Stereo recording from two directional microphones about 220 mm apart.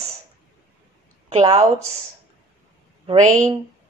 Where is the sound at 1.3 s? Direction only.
30° right (ahead or behind).